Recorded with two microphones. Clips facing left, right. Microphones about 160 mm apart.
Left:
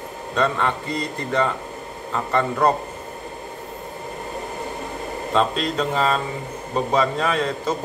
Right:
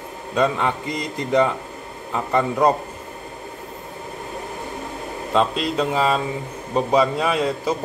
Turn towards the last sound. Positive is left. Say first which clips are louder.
# right 1 dB
turn(degrees=-10)  # may be behind; listen again after turning